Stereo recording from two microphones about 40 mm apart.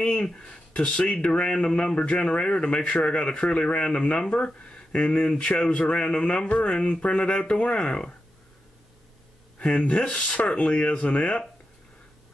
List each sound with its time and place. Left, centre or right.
0.0 s speech: left
6.8 s speech: left
7.1 s speech: left
7.8 s speech: left
9.6 s speech: left